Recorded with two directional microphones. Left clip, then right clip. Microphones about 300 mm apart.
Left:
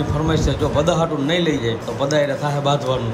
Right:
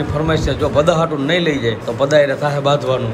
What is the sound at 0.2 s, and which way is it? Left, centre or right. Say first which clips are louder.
A man's voice: right 4 dB; centre.